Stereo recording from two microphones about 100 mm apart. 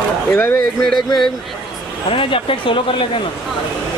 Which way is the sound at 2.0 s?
60° left (ahead or behind).